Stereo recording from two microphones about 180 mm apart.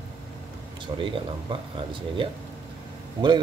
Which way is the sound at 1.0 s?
25° right (ahead or behind).